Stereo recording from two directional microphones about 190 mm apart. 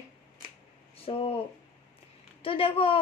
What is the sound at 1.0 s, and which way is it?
Speech, 30° left (ahead or behind).